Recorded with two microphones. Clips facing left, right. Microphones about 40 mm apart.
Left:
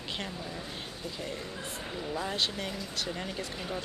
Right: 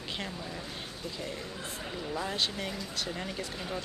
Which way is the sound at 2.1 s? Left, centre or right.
Centre.